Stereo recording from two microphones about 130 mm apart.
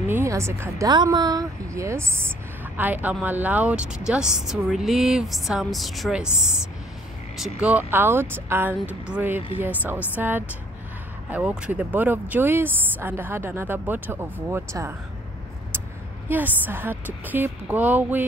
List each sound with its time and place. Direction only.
0.0 s speech: 20° right (ahead or behind)
16.3 s speech: 15° right (ahead or behind)